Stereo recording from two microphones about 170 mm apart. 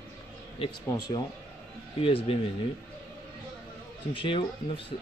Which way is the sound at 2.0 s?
35° left (ahead or behind).